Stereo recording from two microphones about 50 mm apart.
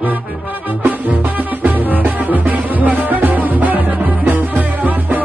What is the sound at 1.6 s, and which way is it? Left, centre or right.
Music, right.